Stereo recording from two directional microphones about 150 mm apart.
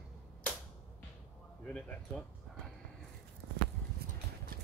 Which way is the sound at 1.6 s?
5° left (ahead or behind).